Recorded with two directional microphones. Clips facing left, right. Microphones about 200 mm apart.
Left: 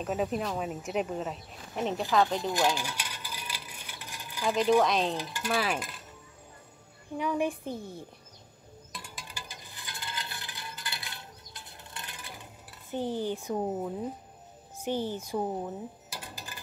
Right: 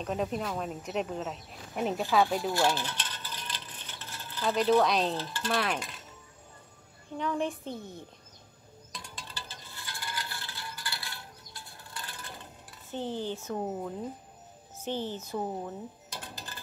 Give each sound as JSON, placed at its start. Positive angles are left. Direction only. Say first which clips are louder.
{"t": 0.0, "sound": "speech", "louder": "left 1 dB", "side_deg": 5}
{"t": 2.5, "sound": "coin", "louder": "even", "side_deg": 15}
{"t": 4.8, "sound": "speech", "louder": "even", "side_deg": 0}
{"t": 5.1, "sound": "speech", "louder": "even", "side_deg": 15}
{"t": 7.2, "sound": "speech", "louder": "left 2 dB", "side_deg": 10}
{"t": 8.9, "sound": "a sound", "louder": "even", "side_deg": 5}
{"t": 12.9, "sound": "speech", "louder": "left 3 dB", "side_deg": 15}